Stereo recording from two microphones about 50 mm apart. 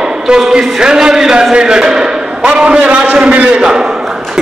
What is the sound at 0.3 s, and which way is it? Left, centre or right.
A man's voice, centre.